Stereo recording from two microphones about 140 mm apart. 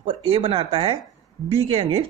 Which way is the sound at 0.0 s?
40° right (ahead or behind).